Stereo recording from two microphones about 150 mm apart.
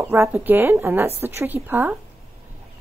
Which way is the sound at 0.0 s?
15° right (ahead or behind).